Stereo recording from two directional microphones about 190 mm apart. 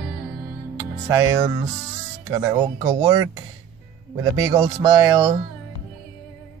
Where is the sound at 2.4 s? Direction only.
20° right (ahead or behind).